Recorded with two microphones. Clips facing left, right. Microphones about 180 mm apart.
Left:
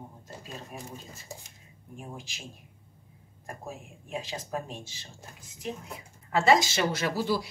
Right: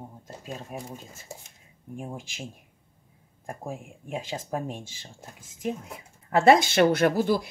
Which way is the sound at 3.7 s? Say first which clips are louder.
Right 3 dB; 50° right (ahead or behind).